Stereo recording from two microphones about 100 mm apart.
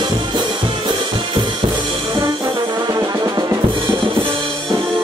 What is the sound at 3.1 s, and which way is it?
Music, 40° right (ahead or behind).